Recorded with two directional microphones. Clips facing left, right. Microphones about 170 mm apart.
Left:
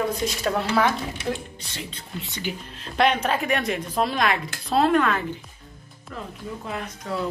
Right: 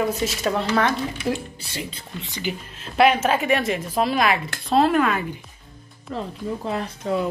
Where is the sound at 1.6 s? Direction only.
10° right (ahead or behind).